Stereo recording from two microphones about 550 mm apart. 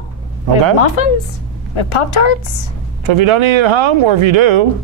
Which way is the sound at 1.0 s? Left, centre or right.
Left.